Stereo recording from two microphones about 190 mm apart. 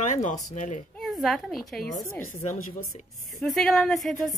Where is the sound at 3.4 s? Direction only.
Centre (ahead or behind).